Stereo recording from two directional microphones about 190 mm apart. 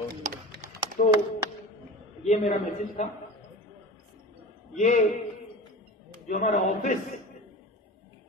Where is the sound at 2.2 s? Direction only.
40° left (ahead or behind).